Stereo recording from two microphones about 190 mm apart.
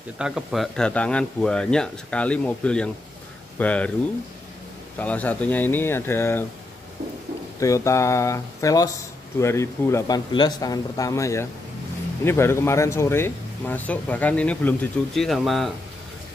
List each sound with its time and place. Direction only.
0.2 s speech: centre (ahead or behind)
4.9 s speech: 10° left (ahead or behind)
7.6 s speech: 15° left (ahead or behind); by 15.7 s centre (ahead or behind)